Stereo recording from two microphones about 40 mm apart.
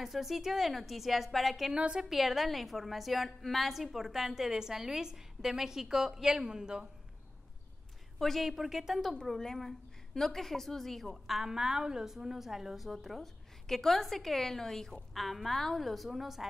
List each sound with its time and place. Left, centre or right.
0.0 s a woman's voice: centre
1.7 s a woman's voice: right
2.0 s a woman's voice: centre
8.2 s a woman's voice: centre
8.5 s a woman's voice: centre
9.3 s a woman's voice: centre